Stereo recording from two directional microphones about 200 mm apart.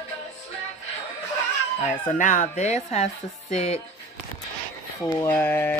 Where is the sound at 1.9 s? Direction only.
40° left (ahead or behind).